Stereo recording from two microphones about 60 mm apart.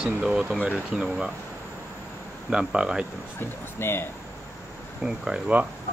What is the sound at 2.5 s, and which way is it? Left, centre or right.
Speech, centre.